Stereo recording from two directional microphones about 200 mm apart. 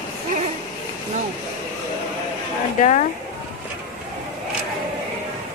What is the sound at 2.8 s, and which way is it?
Speech, 35° left (ahead or behind).